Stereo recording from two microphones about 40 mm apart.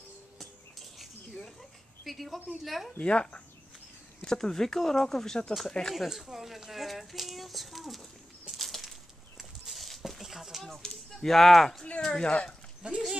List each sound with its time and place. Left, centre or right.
0.4 s a sound: centre
3.0 s speech: left
4.2 s speech: centre
5.9 s speech: centre
8.5 s a sound: centre
10.8 s speech: centre
12.1 s speech: left
12.8 s speech: right